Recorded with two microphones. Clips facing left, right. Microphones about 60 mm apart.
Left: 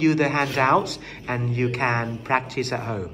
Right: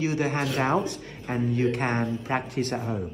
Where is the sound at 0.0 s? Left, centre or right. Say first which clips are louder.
Left 6 dB; left.